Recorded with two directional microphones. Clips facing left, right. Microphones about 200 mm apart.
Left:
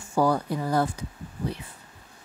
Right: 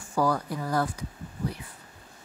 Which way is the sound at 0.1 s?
25° left (ahead or behind).